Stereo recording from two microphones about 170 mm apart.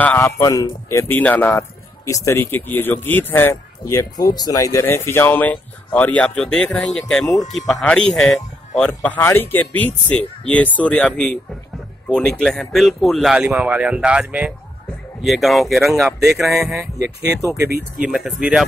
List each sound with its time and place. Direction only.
0.0 s a man's voice: 10° left (ahead or behind)
0.4 s speech: 20° left (ahead or behind); by 16.7 s centre (ahead or behind)
17.3 s speech: 15° right (ahead or behind)
17.6 s speech: 65° right (ahead or behind)
18.0 s speech: 5° right (ahead or behind)